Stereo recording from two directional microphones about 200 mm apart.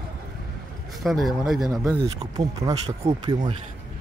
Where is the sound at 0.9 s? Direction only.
Centre (ahead or behind).